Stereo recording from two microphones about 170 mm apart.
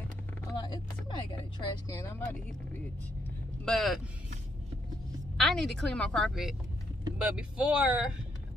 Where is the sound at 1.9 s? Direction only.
20° left (ahead or behind).